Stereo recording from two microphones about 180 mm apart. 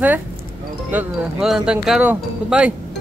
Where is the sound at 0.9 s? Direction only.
5° right (ahead or behind).